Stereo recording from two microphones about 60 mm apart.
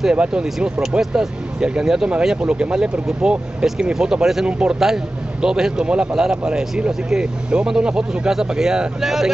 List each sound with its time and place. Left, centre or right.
0.0 s speech: centre
4.5 s a man's voice: centre
4.7 s speech: centre